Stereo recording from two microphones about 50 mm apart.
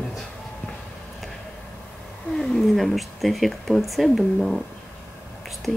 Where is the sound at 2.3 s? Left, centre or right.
Centre.